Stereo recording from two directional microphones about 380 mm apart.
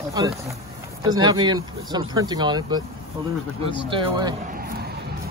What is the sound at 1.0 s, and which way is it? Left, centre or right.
Speech, centre.